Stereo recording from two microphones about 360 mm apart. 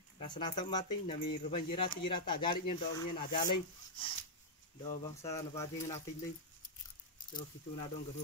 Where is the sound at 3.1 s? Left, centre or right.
Left.